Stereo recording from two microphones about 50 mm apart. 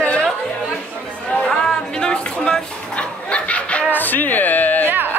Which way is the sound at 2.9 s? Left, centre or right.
Left.